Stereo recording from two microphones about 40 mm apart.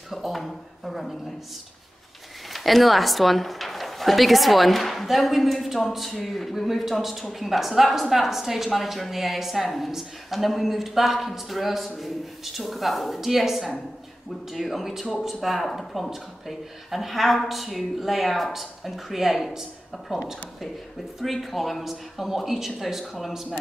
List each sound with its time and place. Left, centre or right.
0.1 s a sound: centre
2.5 s speech: centre
20.1 s speech: centre
21.2 s speech: centre